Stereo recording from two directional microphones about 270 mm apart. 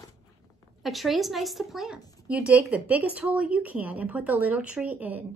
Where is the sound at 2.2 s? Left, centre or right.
Centre.